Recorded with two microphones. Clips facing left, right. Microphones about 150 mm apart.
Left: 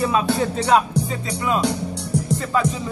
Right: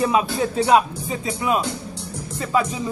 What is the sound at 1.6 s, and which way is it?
Music, 70° left (ahead or behind).